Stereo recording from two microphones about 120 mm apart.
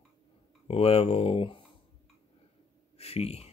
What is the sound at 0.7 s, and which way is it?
Speech, 55° left (ahead or behind).